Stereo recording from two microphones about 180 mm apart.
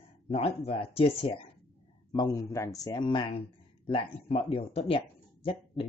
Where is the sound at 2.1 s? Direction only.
20° left (ahead or behind).